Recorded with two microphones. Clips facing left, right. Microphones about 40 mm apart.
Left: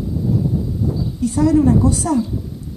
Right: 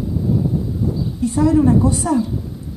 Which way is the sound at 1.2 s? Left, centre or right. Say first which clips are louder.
Even; right.